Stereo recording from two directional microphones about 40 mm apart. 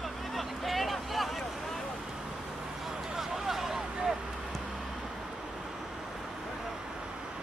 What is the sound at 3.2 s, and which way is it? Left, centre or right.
Vehicle, centre.